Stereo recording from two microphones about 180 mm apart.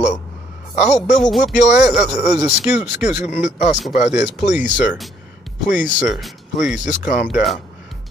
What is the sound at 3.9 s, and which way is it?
Speech, 40° left (ahead or behind).